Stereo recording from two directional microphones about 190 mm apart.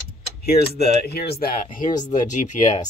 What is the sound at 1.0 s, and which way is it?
Speech, 55° left (ahead or behind).